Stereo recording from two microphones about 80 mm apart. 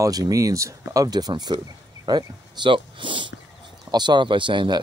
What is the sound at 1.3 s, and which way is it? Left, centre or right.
Speech, right.